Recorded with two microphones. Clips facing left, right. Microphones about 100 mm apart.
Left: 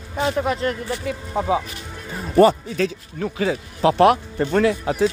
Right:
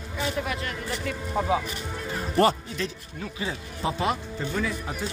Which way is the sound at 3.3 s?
75° left (ahead or behind).